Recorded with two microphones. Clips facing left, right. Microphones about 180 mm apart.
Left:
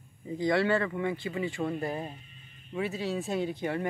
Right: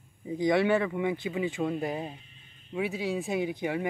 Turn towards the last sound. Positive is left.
turn(degrees=-10)  # may be behind; listen again after turning